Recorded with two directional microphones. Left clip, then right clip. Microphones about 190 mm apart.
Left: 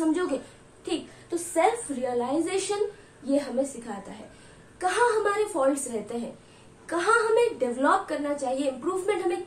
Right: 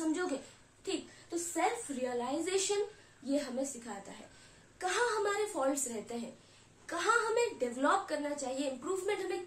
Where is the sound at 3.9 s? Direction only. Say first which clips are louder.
Left 8 dB; 15° right (ahead or behind).